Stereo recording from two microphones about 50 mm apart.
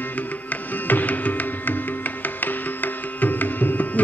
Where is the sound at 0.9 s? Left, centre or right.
Left.